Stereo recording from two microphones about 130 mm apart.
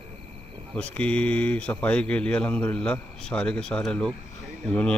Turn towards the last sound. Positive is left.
turn(degrees=10)  # may be behind; listen again after turning